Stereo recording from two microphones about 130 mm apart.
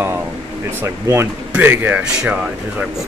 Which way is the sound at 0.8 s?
20° right (ahead or behind).